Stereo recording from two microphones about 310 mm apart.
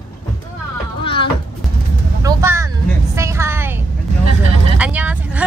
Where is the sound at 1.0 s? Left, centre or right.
Centre.